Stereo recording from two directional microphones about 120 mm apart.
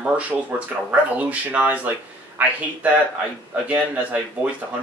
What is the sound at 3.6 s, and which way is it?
Speech, 10° right (ahead or behind).